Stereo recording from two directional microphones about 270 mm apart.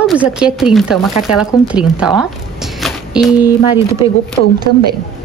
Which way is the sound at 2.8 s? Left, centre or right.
Centre.